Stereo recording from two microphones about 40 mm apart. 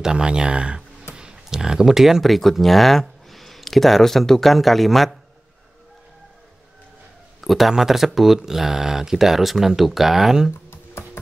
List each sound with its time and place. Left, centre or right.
0.0 s speech: right
1.1 s a sound: centre
2.2 s speech: centre
7.4 s speech: centre